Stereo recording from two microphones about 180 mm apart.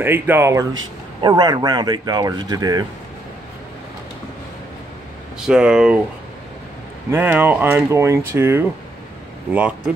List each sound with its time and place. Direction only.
0.0 s speech: 10° right (ahead or behind)
5.4 s speech: 5° right (ahead or behind)
7.1 s speech: 10° right (ahead or behind)